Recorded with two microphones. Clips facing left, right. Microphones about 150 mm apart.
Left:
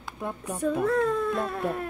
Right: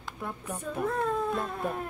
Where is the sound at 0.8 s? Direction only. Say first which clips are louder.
Left 2 dB; 90° left.